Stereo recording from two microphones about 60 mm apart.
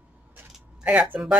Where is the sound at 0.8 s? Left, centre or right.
Right.